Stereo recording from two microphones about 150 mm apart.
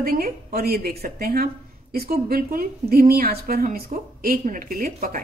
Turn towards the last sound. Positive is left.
turn(degrees=-70)  # may be behind; listen again after turning